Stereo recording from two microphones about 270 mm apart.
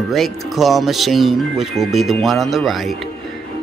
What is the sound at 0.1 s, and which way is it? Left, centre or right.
Speech, centre.